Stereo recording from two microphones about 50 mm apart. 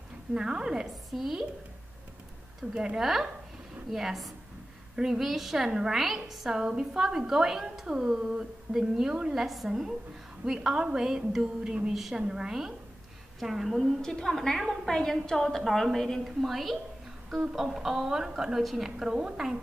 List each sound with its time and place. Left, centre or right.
0.3 s a woman's voice: centre
2.7 s a woman's voice: centre
3.0 s a woman's voice: centre
11.9 s a woman's voice: centre
14.0 s a woman's voice: centre